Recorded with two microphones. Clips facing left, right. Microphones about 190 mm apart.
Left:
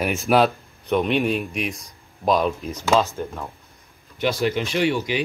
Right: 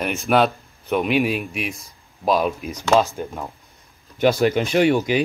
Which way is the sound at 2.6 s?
15° right (ahead or behind).